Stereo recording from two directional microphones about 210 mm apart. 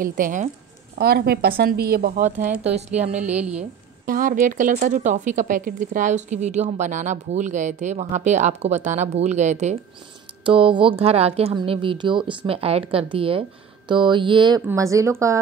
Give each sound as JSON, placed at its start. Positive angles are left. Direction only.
{"t": 0.0, "sound": "a woman's voice", "side_deg": -40}
{"t": 0.9, "sound": "a woman's voice", "side_deg": -50}
{"t": 3.2, "sound": "speech", "side_deg": -5}
{"t": 4.0, "sound": "a woman's voice", "side_deg": -40}